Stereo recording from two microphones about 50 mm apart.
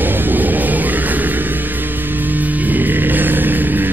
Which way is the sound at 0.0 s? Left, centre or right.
Right.